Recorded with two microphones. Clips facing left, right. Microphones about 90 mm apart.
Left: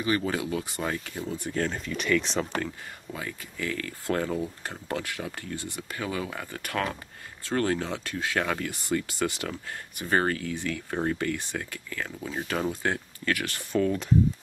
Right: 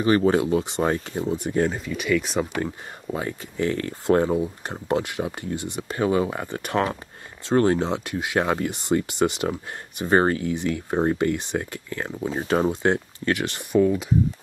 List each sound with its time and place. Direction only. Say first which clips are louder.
0.0 s speech: right 8 dB; 35° right (ahead or behind)
1.2 s speech: right 7 dB; 20° right (ahead or behind)
2.6 s speech: right 6 dB; 30° right (ahead or behind); by 14.1 s 5° right (ahead or behind)